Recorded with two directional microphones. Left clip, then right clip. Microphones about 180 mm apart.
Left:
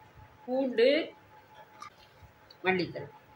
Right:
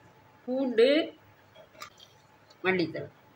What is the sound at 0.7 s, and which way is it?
Speech, 25° right (ahead or behind).